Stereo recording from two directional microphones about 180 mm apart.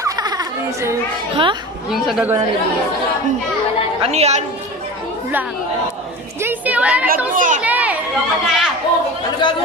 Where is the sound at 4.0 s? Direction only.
35° right (ahead or behind).